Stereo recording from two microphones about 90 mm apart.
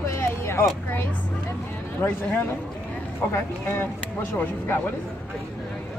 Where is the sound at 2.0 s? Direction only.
20° left (ahead or behind).